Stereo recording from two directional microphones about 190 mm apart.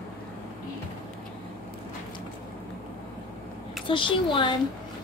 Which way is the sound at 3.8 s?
25° left (ahead or behind).